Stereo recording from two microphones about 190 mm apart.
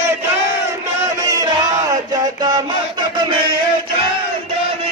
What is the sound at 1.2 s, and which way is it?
Music, 20° right (ahead or behind).